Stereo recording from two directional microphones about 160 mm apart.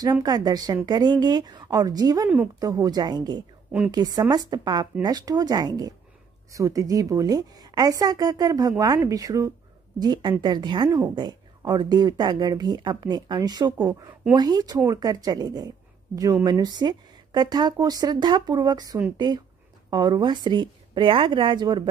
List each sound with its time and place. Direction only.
0.2 s a woman's voice: 25° right (ahead or behind)
2.2 s a woman's voice: 10° right (ahead or behind)
2.6 s a woman's voice: 20° right (ahead or behind)